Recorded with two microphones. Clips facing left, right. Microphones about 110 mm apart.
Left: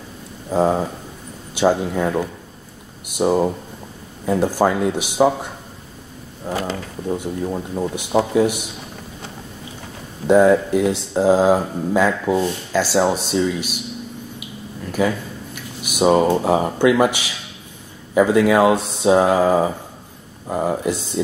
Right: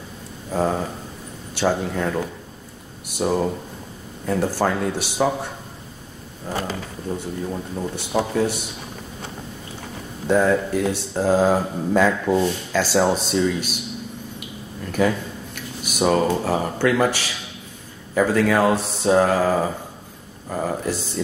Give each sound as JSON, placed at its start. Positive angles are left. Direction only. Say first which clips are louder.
{"t": 0.5, "sound": "speech", "louder": "left 4 dB", "side_deg": 15}
{"t": 6.5, "sound": "speech", "louder": "left 3 dB", "side_deg": 10}
{"t": 10.2, "sound": "speech", "louder": "left 5 dB", "side_deg": 15}
{"t": 14.9, "sound": "speech", "louder": "even", "side_deg": 0}
{"t": 15.9, "sound": "speech", "louder": "left 4 dB", "side_deg": 15}